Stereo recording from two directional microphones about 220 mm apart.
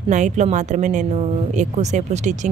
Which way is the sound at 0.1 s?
35° right (ahead or behind).